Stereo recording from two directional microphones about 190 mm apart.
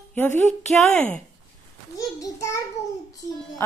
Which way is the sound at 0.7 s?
5° left (ahead or behind).